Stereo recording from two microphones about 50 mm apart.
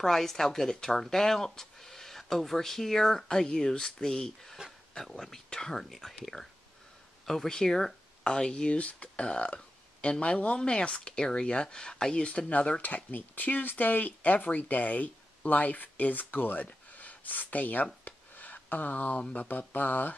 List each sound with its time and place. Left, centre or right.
0.0 s speech: centre
5.9 s speech: centre; by 17.8 s left
18.0 s a sound: left
19.3 s speech: left